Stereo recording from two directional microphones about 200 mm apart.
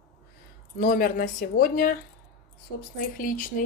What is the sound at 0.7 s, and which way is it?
Speech, 45° left (ahead or behind).